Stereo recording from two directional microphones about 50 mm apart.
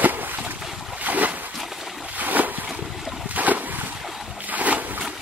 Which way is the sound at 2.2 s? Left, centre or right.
Right.